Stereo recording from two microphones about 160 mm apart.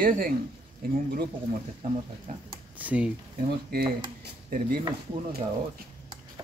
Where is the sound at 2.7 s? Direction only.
10° right (ahead or behind).